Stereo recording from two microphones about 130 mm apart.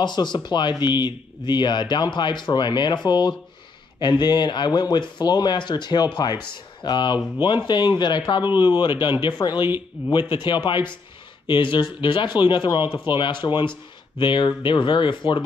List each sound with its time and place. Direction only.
0.0 s speech: 35° left (ahead or behind)